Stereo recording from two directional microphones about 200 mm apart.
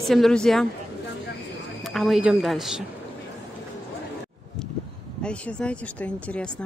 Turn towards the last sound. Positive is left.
turn(degrees=5)  # may be behind; listen again after turning